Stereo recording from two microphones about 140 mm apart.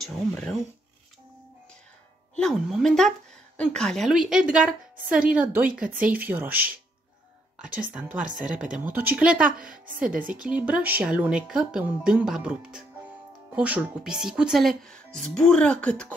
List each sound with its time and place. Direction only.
0.3 s speech: 5° left (ahead or behind)
2.3 s speech: centre (ahead or behind)
8.2 s speech: 70° right (ahead or behind)
8.7 s speech: 10° right (ahead or behind)
10.0 s speech: 75° right (ahead or behind)
10.3 s speech: 10° right (ahead or behind); by 16.2 s 10° left (ahead or behind)